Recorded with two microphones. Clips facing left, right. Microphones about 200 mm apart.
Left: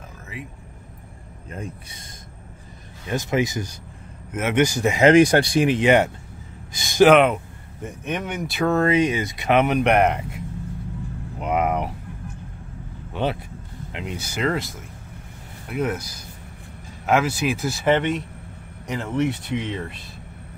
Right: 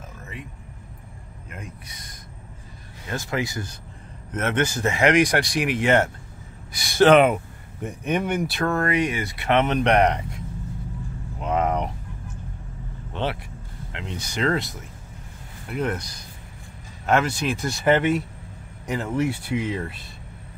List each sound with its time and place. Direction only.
1.5 s speech: 30° left (ahead or behind)
3.1 s speech: 20° left (ahead or behind)
5.1 s speech: 30° left (ahead or behind)
7.1 s speech: centre (ahead or behind)
7.8 s speech: 10° right (ahead or behind)
8.6 s speech: 20° left (ahead or behind); by 10.4 s 5° left (ahead or behind)
11.3 s a sound: 10° left (ahead or behind)
13.1 s speech: 15° left (ahead or behind); by 20.1 s 5° right (ahead or behind)